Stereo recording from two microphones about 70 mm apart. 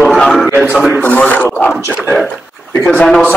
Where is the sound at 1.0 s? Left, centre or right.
Left.